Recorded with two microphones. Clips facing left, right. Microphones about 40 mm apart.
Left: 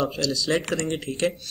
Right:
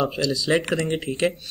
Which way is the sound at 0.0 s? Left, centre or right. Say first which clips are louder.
Right 2 dB; centre.